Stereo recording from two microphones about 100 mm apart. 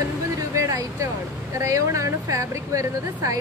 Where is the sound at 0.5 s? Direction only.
30° right (ahead or behind).